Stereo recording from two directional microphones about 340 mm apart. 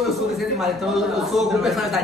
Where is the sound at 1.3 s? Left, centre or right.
Centre.